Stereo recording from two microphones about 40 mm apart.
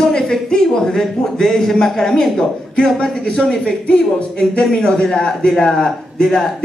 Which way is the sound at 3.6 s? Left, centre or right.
Left.